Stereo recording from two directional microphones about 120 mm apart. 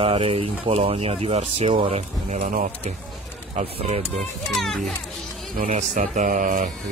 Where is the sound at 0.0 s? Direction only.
50° right (ahead or behind).